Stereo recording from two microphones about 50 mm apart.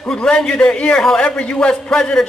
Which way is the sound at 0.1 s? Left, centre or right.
Centre.